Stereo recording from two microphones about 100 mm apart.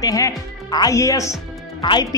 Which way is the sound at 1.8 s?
50° left (ahead or behind).